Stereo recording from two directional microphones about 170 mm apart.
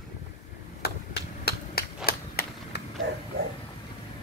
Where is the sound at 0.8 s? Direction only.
70° left (ahead or behind).